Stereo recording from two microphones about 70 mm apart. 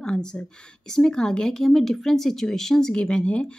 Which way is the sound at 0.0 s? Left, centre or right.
Centre.